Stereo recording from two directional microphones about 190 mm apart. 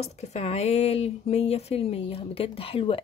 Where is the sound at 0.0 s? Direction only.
35° left (ahead or behind).